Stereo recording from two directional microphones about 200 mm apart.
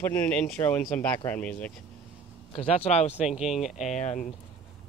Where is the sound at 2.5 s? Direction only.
30° left (ahead or behind).